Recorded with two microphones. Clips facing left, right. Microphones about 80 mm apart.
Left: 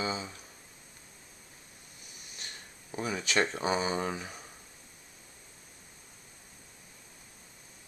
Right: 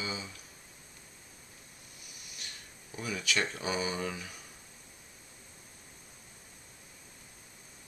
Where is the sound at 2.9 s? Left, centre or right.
Left.